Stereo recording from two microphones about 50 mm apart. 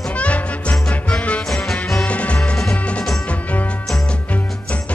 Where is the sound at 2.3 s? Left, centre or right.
Centre.